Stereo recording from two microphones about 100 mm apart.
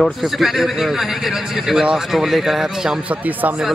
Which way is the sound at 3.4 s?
15° right (ahead or behind).